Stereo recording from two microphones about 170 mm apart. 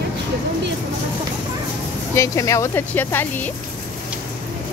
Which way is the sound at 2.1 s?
15° left (ahead or behind).